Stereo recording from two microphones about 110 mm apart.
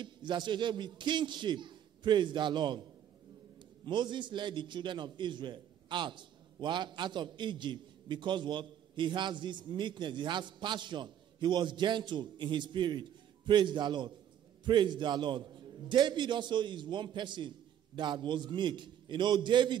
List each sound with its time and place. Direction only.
0.0 s a man's voice: 45° right (ahead or behind)